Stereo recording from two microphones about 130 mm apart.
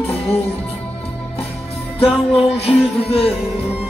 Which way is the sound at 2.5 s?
50° left (ahead or behind).